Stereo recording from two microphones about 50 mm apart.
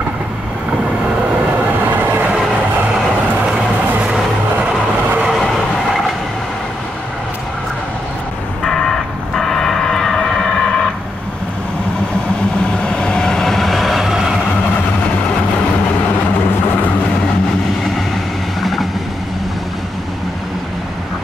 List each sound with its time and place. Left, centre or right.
2.0 s train: right
8.6 s vehicle: centre
12.7 s vehicle: centre
18.6 s vehicle: centre